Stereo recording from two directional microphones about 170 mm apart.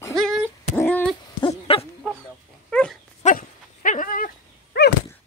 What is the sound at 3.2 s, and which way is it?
Dog, 50° left (ahead or behind).